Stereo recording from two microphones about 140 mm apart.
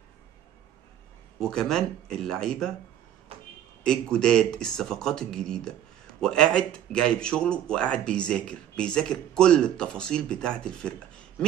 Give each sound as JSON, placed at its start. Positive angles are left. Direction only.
{"t": 1.4, "sound": "speech", "side_deg": 5}
{"t": 3.3, "sound": "a sound", "side_deg": -45}
{"t": 3.8, "sound": "a man's voice", "side_deg": 5}